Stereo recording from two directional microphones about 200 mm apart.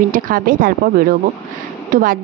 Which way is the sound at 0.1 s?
45° right (ahead or behind).